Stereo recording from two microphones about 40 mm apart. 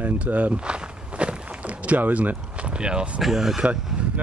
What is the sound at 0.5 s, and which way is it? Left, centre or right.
Walk, right.